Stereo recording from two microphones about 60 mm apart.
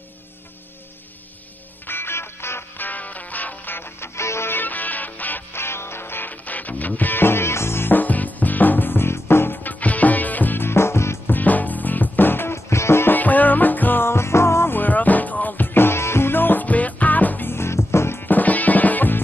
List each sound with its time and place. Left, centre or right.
1.9 s music: left
2.8 s music: left
4.2 s music: left
4.6 s music: left
5.5 s music: left
11.2 s music: left
12.5 s music: left
13.1 s music: left
14.0 s music: left
14.8 s music: left
17.5 s music: left
18.2 s drum: left